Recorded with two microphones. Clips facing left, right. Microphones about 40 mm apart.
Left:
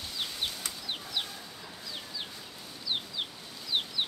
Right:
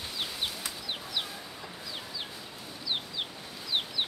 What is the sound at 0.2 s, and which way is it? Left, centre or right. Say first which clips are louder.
Chicken: even; centre.